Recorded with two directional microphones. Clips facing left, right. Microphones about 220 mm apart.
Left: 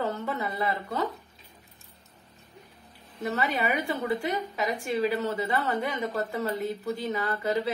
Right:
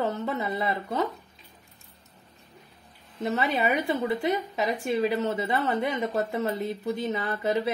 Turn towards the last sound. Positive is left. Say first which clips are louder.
# right 1 dB
turn(degrees=-20)  # may be behind; listen again after turning